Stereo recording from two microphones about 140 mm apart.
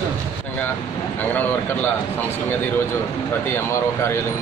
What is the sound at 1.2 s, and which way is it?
Speech, 10° left (ahead or behind).